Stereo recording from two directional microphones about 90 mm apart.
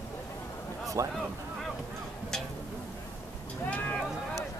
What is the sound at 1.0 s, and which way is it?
Speech, 35° right (ahead or behind).